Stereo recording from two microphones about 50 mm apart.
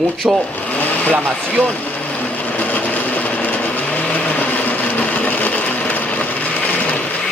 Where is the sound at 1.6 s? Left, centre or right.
Left.